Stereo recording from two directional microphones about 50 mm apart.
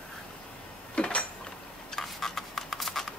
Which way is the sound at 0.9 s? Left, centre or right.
Left.